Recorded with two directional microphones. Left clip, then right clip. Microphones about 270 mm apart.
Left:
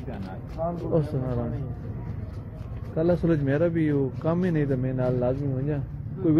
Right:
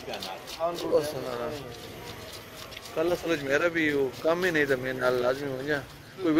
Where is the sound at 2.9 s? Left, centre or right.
Centre.